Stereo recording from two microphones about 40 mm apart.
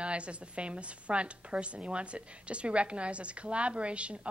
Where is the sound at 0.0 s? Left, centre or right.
Right.